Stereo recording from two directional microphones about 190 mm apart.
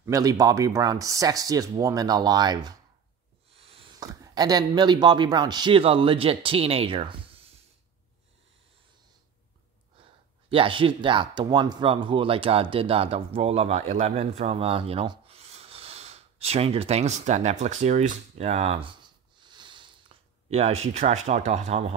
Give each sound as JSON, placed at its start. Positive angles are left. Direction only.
{"t": 0.0, "sound": "speech", "side_deg": -20}
{"t": 10.5, "sound": "speech", "side_deg": -25}
{"t": 20.4, "sound": "speech", "side_deg": -35}